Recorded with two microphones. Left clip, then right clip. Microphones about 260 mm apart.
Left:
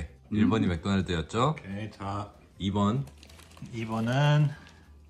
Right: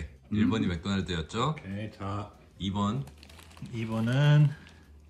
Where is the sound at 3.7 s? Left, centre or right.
Centre.